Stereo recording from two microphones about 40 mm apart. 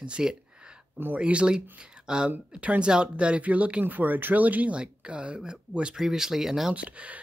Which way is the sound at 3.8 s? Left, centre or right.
Right.